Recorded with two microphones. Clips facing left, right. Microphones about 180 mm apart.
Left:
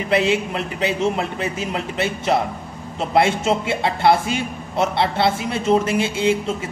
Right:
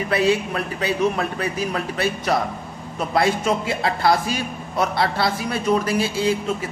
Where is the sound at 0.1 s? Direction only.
25° left (ahead or behind).